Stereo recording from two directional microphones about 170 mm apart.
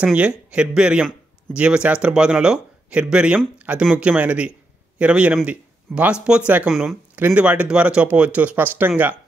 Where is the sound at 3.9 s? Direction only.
5° right (ahead or behind).